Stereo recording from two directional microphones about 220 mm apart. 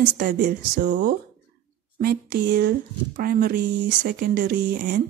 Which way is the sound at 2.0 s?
45° right (ahead or behind).